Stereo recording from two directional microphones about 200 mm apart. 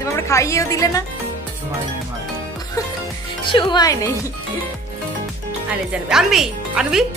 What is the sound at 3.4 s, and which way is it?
Speech, 25° left (ahead or behind).